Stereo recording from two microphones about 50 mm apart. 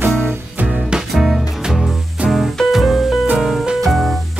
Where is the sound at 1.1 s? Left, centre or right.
Centre.